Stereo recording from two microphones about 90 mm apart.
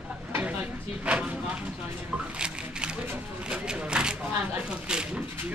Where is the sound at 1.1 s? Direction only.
15° right (ahead or behind).